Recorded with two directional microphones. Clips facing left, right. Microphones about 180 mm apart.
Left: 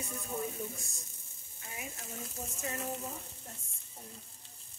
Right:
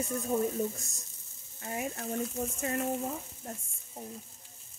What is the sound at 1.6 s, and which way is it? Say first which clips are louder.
Speech: right 11 dB; 50° right (ahead or behind).